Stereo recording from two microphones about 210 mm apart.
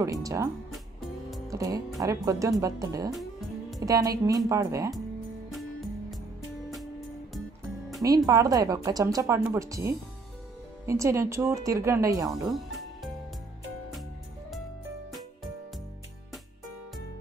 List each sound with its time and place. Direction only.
0.0 s speech: 15° right (ahead or behind)
1.5 s speech: 15° right (ahead or behind)
3.2 s music: centre (ahead or behind)
3.8 s speech: 15° right (ahead or behind)
5.5 s music: centre (ahead or behind)
8.3 s speech: 15° right (ahead or behind)
12.3 s music: centre (ahead or behind)